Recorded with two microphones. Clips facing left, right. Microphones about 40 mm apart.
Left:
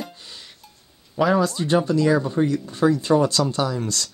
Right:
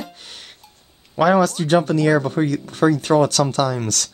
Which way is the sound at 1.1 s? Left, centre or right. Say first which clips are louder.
Right 4 dB; right.